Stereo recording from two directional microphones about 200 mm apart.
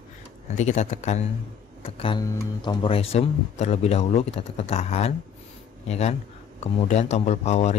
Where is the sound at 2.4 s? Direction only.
20° left (ahead or behind).